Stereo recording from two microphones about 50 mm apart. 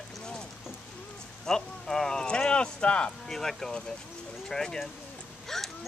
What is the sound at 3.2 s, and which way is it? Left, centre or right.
Speech, centre.